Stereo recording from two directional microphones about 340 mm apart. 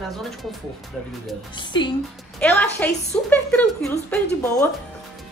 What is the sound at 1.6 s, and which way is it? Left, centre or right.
A woman's voice, centre.